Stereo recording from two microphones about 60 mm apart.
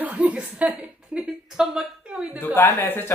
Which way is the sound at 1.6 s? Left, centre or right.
Centre.